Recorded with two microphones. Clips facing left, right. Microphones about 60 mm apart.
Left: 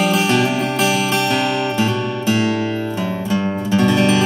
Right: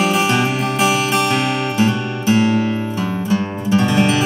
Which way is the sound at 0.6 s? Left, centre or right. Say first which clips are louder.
Right 1 dB; centre.